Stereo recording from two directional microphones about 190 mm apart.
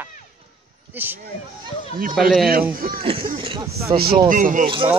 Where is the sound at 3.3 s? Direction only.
30° right (ahead or behind).